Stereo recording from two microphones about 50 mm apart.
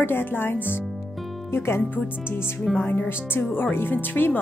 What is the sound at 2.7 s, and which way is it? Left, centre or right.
Speech, centre.